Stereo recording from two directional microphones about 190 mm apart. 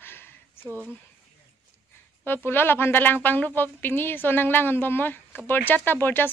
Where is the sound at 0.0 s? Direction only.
10° left (ahead or behind).